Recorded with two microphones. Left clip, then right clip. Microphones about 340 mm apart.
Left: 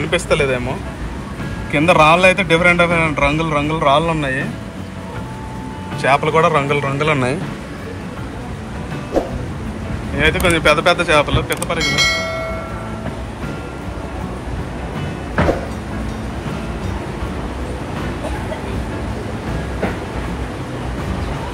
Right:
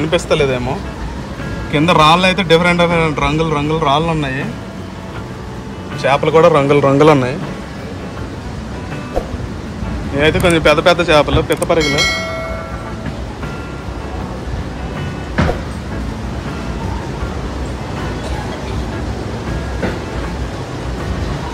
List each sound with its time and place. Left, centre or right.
0.1 s a man's voice: centre
6.0 s a man's voice: centre
10.1 s a man's voice: centre
11.8 s speech: centre